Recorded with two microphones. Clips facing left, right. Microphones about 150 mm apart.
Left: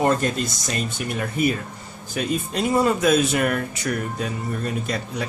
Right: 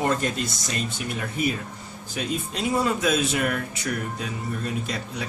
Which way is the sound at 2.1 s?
50° left (ahead or behind).